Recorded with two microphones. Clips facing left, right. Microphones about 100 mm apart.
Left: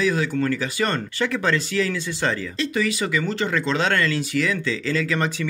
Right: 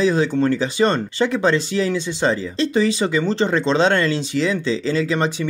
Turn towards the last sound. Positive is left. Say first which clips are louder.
# right 4 dB
turn(degrees=-25)  # may be behind; listen again after turning